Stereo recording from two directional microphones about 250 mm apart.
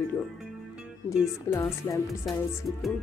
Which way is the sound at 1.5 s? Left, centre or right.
Centre.